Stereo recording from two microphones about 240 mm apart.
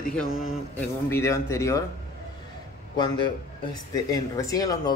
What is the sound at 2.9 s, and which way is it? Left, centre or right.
A man's voice, centre.